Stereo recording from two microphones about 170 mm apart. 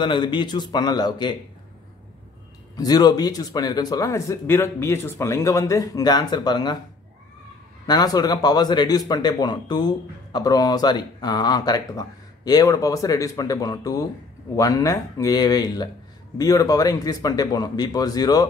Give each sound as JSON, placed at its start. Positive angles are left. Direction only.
{"t": 0.0, "sound": "speech", "side_deg": 25}
{"t": 2.7, "sound": "speech", "side_deg": 20}
{"t": 7.8, "sound": "speech", "side_deg": 25}